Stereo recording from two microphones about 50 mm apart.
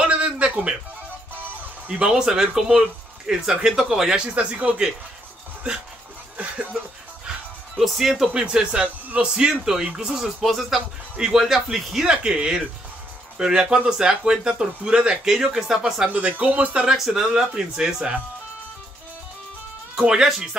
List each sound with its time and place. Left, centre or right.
0.0 s music: right
1.9 s speech: right
4.3 s speech: right
6.3 s speech: right
7.7 s speech: centre
8.3 s speech: centre
10.4 s speech: centre
11.1 s speech: centre
12.1 s speech: centre
16.1 s speech: right
16.8 s speech: centre
20.0 s speech: centre